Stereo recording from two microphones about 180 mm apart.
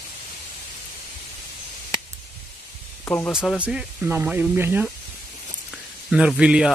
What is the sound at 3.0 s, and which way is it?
Speech, 10° left (ahead or behind).